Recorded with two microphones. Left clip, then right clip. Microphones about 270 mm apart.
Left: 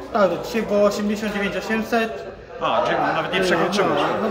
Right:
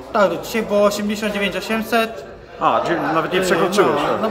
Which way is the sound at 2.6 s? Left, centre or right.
Right.